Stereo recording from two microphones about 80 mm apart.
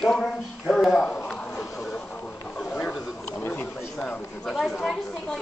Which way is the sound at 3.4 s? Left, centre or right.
Left.